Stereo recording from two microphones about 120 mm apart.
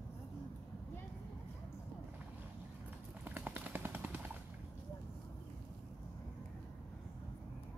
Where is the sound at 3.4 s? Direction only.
15° right (ahead or behind).